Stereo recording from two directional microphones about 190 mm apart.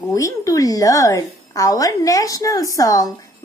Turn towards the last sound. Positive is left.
turn(degrees=20)  # may be behind; listen again after turning